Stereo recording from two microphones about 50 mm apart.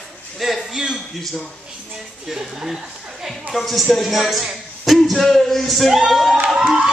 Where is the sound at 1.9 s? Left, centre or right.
Centre.